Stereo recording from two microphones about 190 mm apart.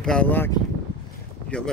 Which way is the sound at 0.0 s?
5° left (ahead or behind).